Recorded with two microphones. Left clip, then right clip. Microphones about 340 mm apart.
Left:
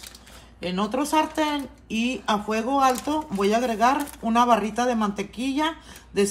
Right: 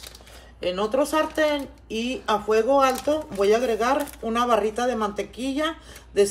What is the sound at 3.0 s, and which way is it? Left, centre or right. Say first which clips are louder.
Speech: right 3 dB; centre.